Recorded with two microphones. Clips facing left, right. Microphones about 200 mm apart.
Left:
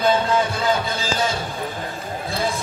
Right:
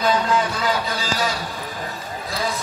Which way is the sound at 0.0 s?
25° left (ahead or behind).